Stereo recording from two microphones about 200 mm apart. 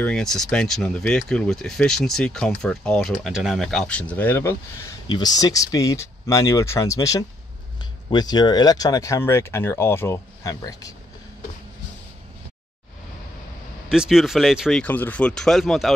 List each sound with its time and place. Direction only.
0.0 s speech: 5° left (ahead or behind)
13.8 s speech: 5° right (ahead or behind)